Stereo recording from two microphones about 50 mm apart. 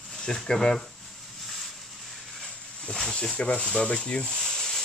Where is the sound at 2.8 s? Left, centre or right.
Centre.